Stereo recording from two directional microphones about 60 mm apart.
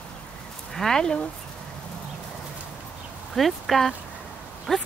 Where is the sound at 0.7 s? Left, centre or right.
Centre.